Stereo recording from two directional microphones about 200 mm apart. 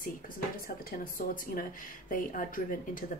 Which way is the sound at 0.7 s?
45° left (ahead or behind).